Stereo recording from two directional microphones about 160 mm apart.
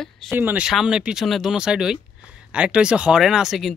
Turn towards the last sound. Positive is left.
turn(degrees=0)  # may be behind; listen again after turning